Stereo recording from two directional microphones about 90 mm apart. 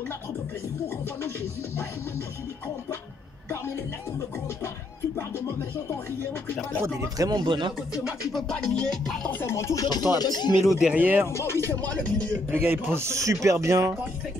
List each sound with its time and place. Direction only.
5.1 s music: 30° left (ahead or behind)
6.8 s speech: 35° right (ahead or behind)
7.2 s speech: 55° right (ahead or behind)
8.3 s music: 5° left (ahead or behind)
9.3 s music: 25° left (ahead or behind)
10.1 s speech: 50° left (ahead or behind)
10.8 s speech: 15° right (ahead or behind)
11.2 s music: 30° left (ahead or behind)
11.9 s music: 15° left (ahead or behind)
12.4 s speech: 25° right (ahead or behind)